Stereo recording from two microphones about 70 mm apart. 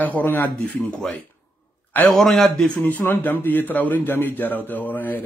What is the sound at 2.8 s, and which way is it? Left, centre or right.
Speech, left.